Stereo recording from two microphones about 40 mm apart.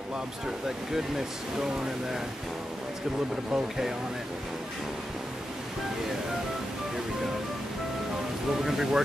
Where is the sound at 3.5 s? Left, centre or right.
Centre.